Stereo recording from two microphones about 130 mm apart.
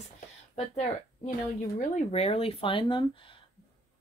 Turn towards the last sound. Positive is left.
turn(degrees=40)  # may be behind; listen again after turning